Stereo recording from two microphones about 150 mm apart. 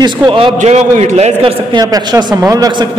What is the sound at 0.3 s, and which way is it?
Speech, 35° right (ahead or behind).